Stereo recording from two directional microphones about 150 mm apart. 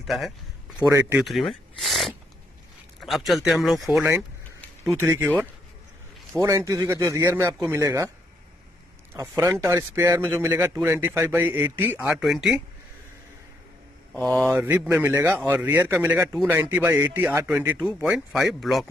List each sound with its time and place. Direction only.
0.0 s speech: centre (ahead or behind)
0.8 s a man's voice: 20° right (ahead or behind)
1.2 s a sound: centre (ahead or behind)
3.0 s speech: centre (ahead or behind)
4.8 s a man's voice: 20° right (ahead or behind)
9.1 s a man's voice: 20° right (ahead or behind)
14.1 s a man's voice: 15° right (ahead or behind)
17.7 s speech: centre (ahead or behind)